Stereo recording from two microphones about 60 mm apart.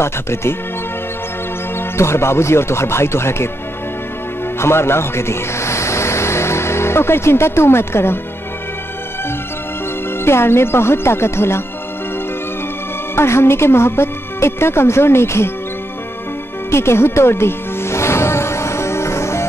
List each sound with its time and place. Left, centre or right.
0.0 s speech: left
2.0 s speech: left
4.6 s speech: left
10.2 s speech: left
13.1 s speech: left
16.7 s music: left